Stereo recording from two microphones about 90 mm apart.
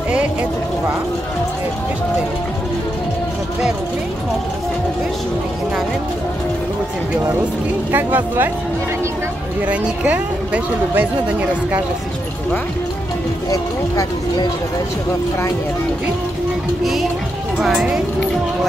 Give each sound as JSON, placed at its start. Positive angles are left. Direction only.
{"t": 7.9, "sound": "speech", "side_deg": -20}
{"t": 9.7, "sound": "speech", "side_deg": -15}
{"t": 13.5, "sound": "speech", "side_deg": 40}
{"t": 17.6, "sound": "speech", "side_deg": -5}